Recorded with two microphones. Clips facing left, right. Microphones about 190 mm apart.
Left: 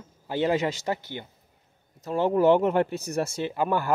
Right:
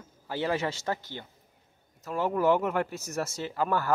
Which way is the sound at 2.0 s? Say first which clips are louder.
Left 5 dB; 25° left (ahead or behind).